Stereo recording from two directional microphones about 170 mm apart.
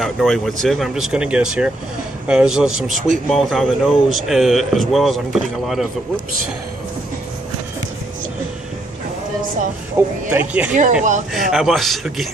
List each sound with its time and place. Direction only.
0.0 s speech: centre (ahead or behind)
10.0 s speech: 15° right (ahead or behind)
10.8 s speech: 50° right (ahead or behind)
11.3 s speech: centre (ahead or behind)